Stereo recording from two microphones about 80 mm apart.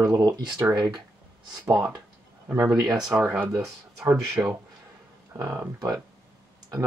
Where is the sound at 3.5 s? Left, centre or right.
Right.